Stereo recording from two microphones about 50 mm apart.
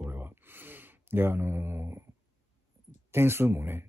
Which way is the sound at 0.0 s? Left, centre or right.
Right.